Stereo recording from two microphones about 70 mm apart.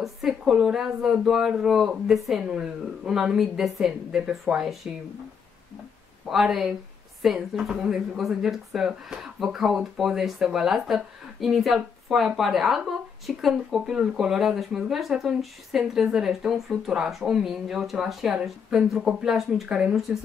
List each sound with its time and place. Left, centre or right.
0.0 s speech: centre
2.4 s a woman's voice: centre
4.9 s a woman's voice: centre
6.2 s speech: centre
19.7 s a woman's voice: centre